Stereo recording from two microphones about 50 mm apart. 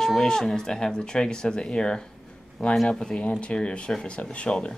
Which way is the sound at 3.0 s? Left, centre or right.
Left.